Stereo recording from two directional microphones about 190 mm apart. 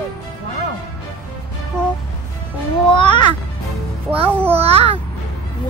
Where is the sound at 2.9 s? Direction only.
25° left (ahead or behind).